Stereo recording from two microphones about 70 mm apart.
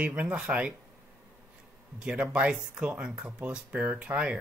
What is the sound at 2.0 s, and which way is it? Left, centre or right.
Speech, centre.